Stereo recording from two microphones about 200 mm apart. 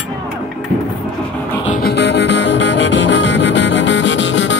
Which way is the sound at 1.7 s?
50° left (ahead or behind).